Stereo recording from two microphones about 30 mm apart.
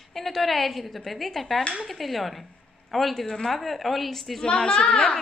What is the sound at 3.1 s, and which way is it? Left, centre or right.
Speech, centre.